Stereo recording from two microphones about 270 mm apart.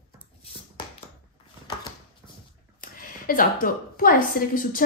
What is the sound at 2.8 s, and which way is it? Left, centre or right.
A woman's voice, left.